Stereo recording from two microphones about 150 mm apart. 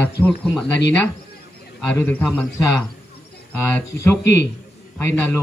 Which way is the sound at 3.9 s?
15° left (ahead or behind).